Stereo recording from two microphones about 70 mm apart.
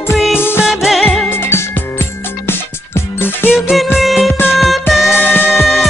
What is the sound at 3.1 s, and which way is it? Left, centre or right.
Music, left.